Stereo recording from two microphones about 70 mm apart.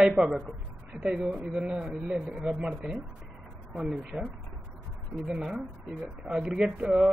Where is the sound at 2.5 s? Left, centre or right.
Centre.